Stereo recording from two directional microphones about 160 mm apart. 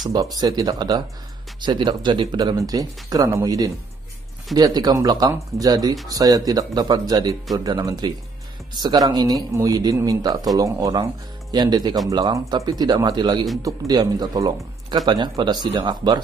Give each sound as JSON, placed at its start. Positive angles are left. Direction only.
{"t": 0.1, "sound": "speech", "side_deg": -25}